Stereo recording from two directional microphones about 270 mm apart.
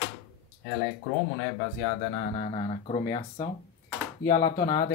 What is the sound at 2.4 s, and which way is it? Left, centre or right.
Speech, left.